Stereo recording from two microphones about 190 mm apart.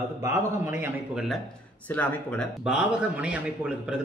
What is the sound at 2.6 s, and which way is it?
A man's voice, 5° right (ahead or behind).